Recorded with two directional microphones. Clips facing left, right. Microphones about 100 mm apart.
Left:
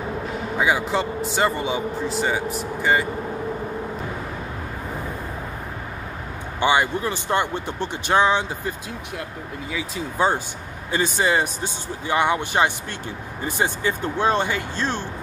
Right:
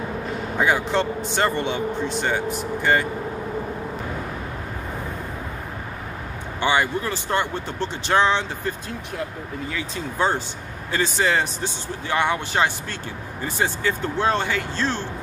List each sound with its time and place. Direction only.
0.6 s speech: 5° left (ahead or behind)
6.6 s speech: 15° left (ahead or behind)